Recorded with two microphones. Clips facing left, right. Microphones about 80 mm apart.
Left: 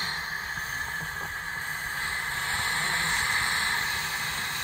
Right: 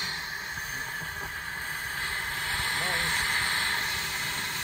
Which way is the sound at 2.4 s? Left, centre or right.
Left.